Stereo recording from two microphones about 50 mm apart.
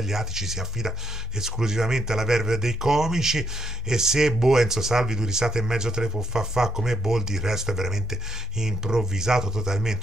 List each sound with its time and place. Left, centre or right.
0.0 s speech: centre